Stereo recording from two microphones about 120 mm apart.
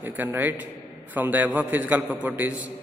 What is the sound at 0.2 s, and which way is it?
A man's voice, 15° right (ahead or behind).